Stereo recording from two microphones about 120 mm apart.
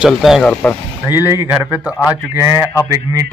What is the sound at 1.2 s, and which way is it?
Speech, 25° right (ahead or behind).